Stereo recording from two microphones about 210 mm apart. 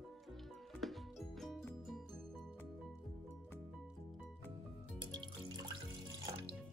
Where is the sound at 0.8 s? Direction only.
Centre (ahead or behind).